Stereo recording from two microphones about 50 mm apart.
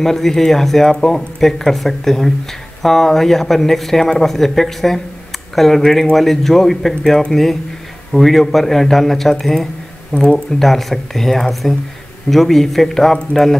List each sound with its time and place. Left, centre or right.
0.0 s speech: centre
10.6 s speech: centre